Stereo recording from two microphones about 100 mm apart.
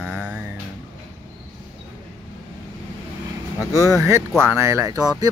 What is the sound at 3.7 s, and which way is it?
Speech, 30° right (ahead or behind).